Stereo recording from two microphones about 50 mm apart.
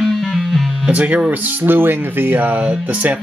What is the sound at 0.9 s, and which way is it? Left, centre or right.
Music, right.